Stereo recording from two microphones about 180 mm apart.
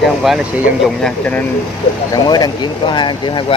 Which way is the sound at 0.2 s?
Centre (ahead or behind).